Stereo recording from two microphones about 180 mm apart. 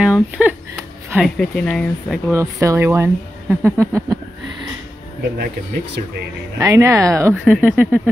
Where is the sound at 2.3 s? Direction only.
15° right (ahead or behind).